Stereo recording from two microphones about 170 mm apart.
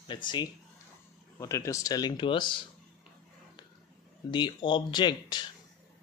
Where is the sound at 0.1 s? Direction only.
25° left (ahead or behind).